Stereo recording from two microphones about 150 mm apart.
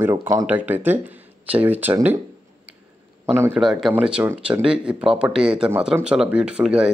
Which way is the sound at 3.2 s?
15° right (ahead or behind).